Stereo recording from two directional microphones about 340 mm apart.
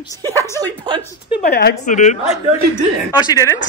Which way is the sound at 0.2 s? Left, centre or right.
Centre.